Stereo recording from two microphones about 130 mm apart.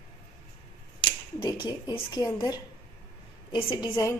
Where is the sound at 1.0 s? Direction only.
40° left (ahead or behind).